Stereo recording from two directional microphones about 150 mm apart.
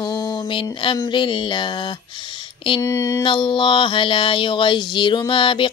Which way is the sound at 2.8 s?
20° left (ahead or behind).